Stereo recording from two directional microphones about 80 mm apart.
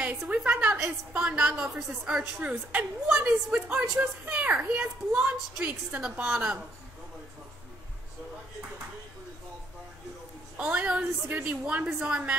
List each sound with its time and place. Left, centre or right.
0.3 s a sound: centre
1.1 s a woman's voice: centre
10.6 s a woman's voice: centre